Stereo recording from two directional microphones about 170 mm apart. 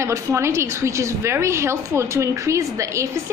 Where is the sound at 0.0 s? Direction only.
15° right (ahead or behind).